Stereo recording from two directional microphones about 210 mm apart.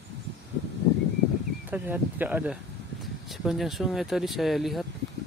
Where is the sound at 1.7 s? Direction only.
10° right (ahead or behind).